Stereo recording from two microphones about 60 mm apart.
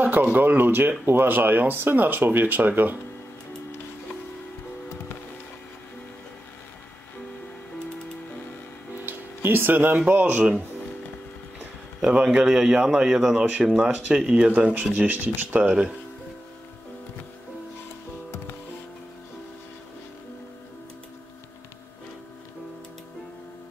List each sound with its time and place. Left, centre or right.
0.0 s speech: right
9.0 s speech: right
12.0 s a man's voice: centre